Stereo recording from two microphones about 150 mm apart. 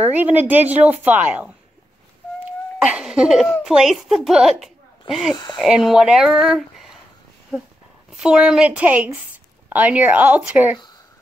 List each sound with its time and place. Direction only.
0.0 s a woman's voice: 10° right (ahead or behind)
2.8 s speech: 5° right (ahead or behind)
5.3 s speech: 30° left (ahead or behind)
5.6 s speech: centre (ahead or behind)
8.1 s a woman's voice: 5° right (ahead or behind)